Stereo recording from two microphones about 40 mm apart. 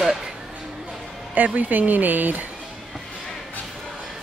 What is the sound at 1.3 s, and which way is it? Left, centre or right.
Speech, right.